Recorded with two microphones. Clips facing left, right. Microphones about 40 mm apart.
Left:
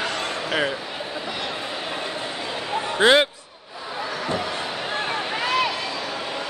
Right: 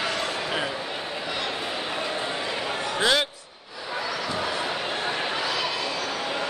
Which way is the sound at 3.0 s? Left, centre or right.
Left.